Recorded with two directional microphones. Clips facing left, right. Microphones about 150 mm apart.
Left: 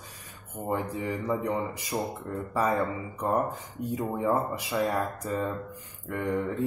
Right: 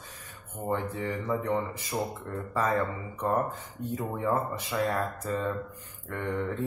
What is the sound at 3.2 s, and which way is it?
Speech, 15° left (ahead or behind).